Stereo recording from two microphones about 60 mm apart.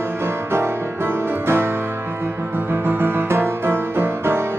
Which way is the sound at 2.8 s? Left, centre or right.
Right.